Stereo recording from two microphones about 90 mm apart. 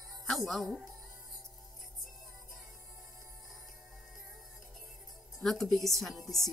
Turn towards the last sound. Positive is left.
turn(degrees=0)  # may be behind; listen again after turning